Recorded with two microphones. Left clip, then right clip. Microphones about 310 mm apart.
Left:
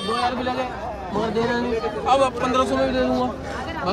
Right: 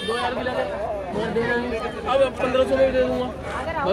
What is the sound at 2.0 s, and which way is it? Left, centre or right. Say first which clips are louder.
Speech: left 1 dB; centre.